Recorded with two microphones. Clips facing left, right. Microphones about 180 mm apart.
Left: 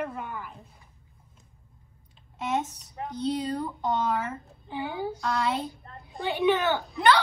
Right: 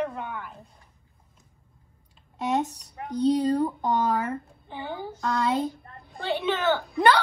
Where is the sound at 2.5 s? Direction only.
35° right (ahead or behind).